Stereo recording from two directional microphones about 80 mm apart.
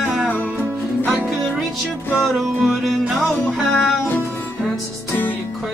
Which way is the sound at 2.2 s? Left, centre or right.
Centre.